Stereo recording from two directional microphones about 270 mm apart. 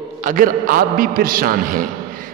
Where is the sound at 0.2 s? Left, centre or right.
Right.